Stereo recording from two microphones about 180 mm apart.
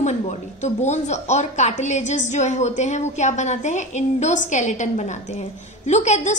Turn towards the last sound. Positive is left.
turn(degrees=40)  # may be behind; listen again after turning